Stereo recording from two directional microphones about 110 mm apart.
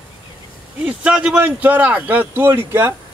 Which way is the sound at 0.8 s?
10° right (ahead or behind).